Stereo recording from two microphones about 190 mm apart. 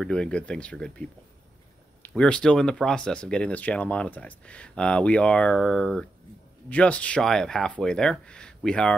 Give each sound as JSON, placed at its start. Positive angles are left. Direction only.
{"t": 0.0, "sound": "speech", "side_deg": 5}
{"t": 2.0, "sound": "speech", "side_deg": 5}